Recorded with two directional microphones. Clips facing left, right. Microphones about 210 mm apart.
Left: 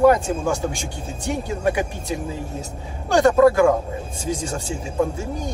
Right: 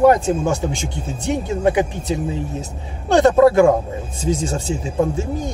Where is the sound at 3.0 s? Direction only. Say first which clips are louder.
Right 2 dB; 25° right (ahead or behind).